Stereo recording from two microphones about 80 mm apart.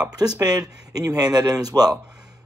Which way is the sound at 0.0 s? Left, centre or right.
Right.